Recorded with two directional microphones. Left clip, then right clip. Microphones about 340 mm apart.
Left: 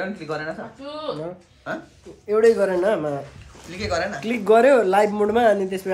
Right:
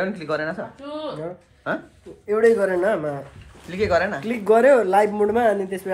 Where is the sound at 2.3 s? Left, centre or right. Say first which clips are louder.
Left 1 dB; centre.